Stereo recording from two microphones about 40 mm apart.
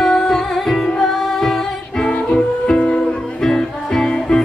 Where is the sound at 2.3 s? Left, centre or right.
Left.